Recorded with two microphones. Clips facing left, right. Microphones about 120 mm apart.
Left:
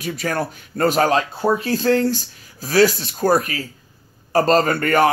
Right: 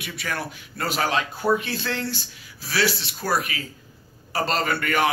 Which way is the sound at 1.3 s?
30° left (ahead or behind).